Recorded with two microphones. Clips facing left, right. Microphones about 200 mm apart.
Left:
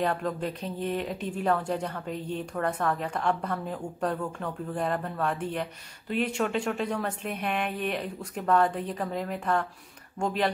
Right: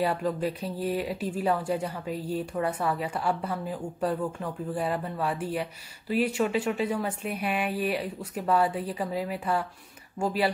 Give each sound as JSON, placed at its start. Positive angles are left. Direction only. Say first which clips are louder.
{"t": 0.0, "sound": "a woman's voice", "louder": "right 2 dB", "side_deg": -5}